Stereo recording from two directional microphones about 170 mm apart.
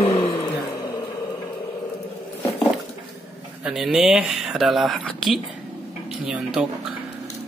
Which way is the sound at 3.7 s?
5° right (ahead or behind).